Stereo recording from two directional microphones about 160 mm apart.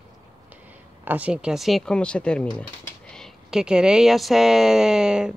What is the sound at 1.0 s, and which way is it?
Speech, 10° right (ahead or behind).